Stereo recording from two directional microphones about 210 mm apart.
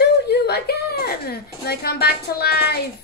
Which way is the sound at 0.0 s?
50° left (ahead or behind).